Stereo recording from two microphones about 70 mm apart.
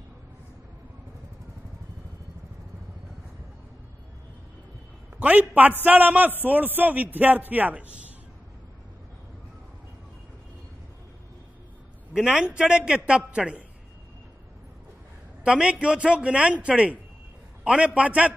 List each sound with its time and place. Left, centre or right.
5.1 s a man's voice: right
12.1 s a man's voice: centre
15.4 s a man's voice: centre